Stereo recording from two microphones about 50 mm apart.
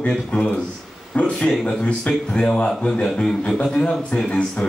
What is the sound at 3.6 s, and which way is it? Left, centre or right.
A man's voice, centre.